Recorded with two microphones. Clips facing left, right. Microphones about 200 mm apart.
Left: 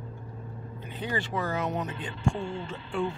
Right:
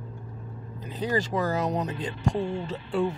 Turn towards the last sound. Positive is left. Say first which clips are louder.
# right 4 dB
turn(degrees=-35)  # may be behind; listen again after turning